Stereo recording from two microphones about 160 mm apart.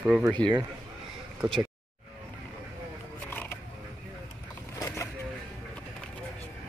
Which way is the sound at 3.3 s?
15° left (ahead or behind).